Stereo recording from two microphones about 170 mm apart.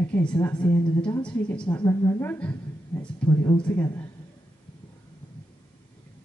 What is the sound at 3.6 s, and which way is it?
Speech, 15° left (ahead or behind).